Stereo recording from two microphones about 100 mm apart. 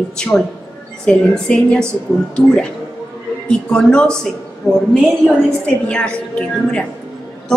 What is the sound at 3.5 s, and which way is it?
A woman's voice, 10° left (ahead or behind).